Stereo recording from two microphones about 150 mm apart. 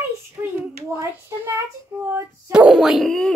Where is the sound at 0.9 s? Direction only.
15° right (ahead or behind).